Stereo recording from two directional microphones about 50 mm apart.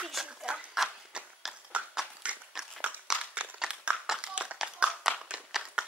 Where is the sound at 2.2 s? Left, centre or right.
Right.